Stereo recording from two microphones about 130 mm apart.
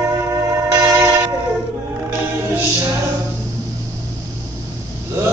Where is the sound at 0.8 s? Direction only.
15° right (ahead or behind).